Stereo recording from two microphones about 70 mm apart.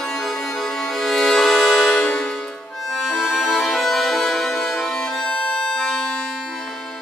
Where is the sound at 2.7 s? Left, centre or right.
Centre.